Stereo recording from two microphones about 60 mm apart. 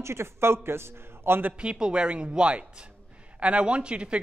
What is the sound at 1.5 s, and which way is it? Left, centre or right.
Speech, centre.